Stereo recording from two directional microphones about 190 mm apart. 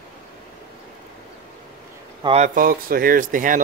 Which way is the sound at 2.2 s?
30° right (ahead or behind).